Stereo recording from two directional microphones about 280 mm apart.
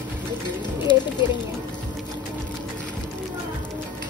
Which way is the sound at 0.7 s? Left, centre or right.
Centre.